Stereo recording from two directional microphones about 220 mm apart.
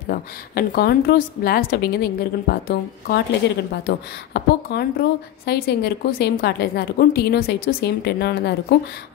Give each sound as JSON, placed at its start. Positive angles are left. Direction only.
{"t": 0.1, "sound": "a woman's voice", "side_deg": 45}